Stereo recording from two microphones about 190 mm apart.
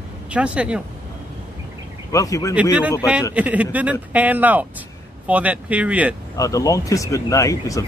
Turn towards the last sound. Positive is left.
turn(degrees=15)  # may be behind; listen again after turning